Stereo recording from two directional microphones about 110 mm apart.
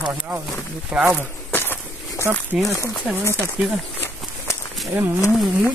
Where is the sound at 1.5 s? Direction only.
20° left (ahead or behind).